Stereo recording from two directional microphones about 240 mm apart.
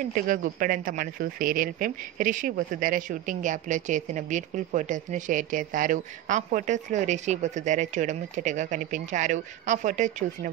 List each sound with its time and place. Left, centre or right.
0.1 s speech: right